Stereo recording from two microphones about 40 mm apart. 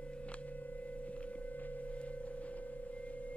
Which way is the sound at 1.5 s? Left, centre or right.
Left.